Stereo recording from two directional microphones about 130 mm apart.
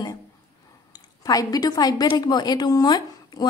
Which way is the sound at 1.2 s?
30° left (ahead or behind).